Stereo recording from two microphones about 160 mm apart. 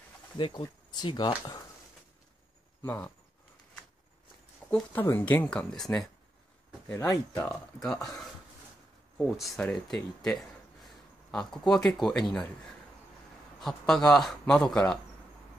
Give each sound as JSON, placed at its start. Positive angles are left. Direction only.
{"t": 0.4, "sound": "speech", "side_deg": 30}
{"t": 2.8, "sound": "speech", "side_deg": 10}
{"t": 4.6, "sound": "speech", "side_deg": 10}
{"t": 9.2, "sound": "speech", "side_deg": 5}
{"t": 13.6, "sound": "speech", "side_deg": 0}